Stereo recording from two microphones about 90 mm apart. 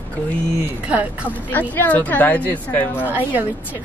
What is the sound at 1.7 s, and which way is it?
A woman's voice, 20° left (ahead or behind).